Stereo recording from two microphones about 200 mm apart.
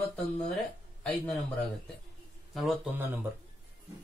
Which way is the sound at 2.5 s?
Centre (ahead or behind).